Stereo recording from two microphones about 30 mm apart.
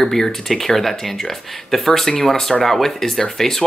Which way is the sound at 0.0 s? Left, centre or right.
Centre.